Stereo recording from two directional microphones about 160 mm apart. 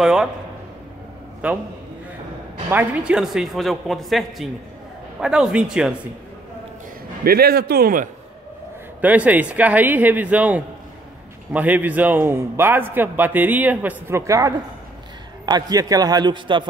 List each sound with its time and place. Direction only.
0.0 s a man's voice: 5° right (ahead or behind)
1.4 s a man's voice: 10° right (ahead or behind)
2.7 s a man's voice: 10° right (ahead or behind)
7.2 s a man's voice: 75° right (ahead or behind)
9.0 s a man's voice: 10° right (ahead or behind); by 16.6 s 30° right (ahead or behind)